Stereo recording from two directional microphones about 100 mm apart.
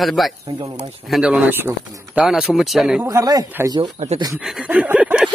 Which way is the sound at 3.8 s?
90° right.